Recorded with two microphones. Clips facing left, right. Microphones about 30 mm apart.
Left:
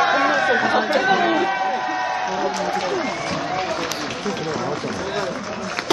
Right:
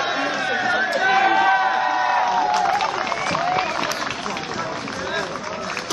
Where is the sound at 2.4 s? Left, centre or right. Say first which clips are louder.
Right 4 dB; right.